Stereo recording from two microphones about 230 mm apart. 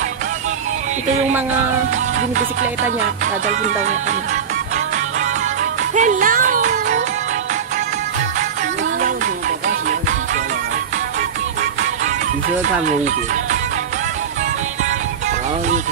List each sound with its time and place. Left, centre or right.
3.4 s music: right
5.9 s music: right
12.8 s speech: right